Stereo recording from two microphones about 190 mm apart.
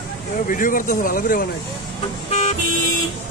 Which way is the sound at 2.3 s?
35° left (ahead or behind).